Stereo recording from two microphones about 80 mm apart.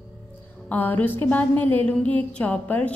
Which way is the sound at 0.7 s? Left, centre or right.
Left.